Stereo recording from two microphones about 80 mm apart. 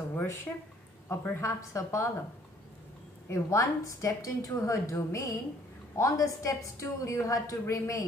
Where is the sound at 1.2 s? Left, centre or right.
Left.